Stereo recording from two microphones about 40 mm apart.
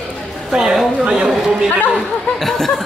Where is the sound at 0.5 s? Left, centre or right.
Centre.